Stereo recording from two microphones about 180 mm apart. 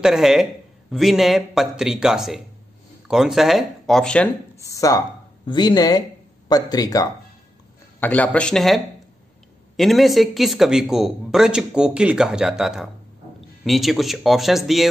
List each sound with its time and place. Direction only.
0.0 s speech: centre (ahead or behind)
4.6 s speech: 20° left (ahead or behind)
8.0 s speech: 10° left (ahead or behind)